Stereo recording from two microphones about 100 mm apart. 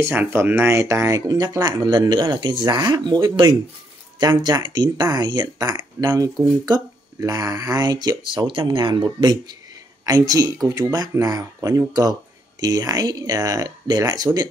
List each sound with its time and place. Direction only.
0.0 s speech: 20° right (ahead or behind); by 14.5 s 40° right (ahead or behind)